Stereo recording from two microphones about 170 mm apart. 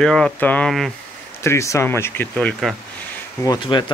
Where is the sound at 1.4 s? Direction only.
15° left (ahead or behind).